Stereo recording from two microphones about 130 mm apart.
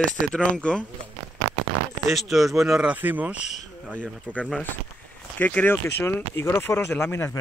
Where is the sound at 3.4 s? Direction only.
65° left (ahead or behind).